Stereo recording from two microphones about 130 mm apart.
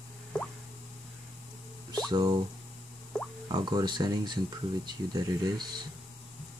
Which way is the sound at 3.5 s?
35° right (ahead or behind).